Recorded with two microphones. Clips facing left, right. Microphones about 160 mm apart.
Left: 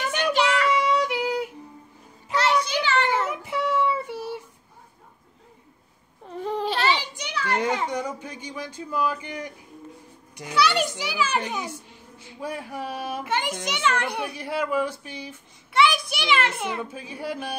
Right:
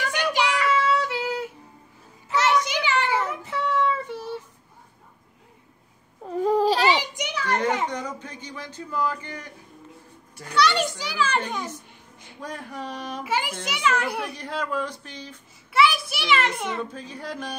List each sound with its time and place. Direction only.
0.2 s child singing: 15° right (ahead or behind)
0.7 s a sound: 15° left (ahead or behind)
2.3 s a sound: 15° right (ahead or behind)
3.3 s child singing: 10° left (ahead or behind)
6.2 s baby cry: 40° right (ahead or behind)
7.4 s children playing: 10° left (ahead or behind)
7.9 s speech: 10° left (ahead or behind)
10.5 s speech: 5° left (ahead or behind)
13.2 s a child's voice: 5° right (ahead or behind)
14.3 s speech: 10° left (ahead or behind)
15.7 s a child's voice: 5° right (ahead or behind)